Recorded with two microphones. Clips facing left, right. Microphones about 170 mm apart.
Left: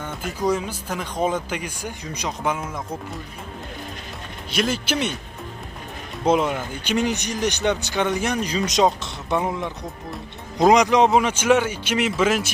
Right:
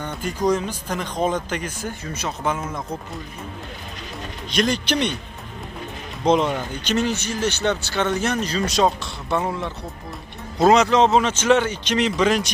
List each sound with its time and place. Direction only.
0.0 s speech: 5° left (ahead or behind)
4.5 s speech: 5° left (ahead or behind)
6.2 s speech: 5° left (ahead or behind)